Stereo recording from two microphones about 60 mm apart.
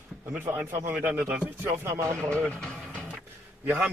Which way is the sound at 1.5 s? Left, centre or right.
Right.